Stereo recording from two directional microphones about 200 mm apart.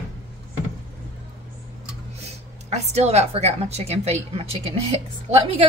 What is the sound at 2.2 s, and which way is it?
A woman's voice, 35° right (ahead or behind).